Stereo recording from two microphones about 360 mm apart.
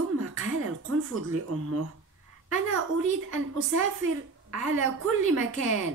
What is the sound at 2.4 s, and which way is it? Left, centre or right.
Speech, right.